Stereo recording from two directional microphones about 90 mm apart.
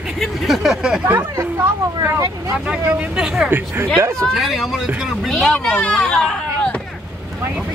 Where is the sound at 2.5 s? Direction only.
10° right (ahead or behind).